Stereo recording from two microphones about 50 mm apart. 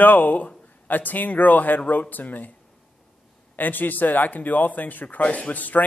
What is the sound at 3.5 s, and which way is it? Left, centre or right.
A man's voice, left.